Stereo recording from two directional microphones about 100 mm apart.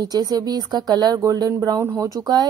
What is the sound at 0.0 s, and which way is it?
Speech, 40° right (ahead or behind).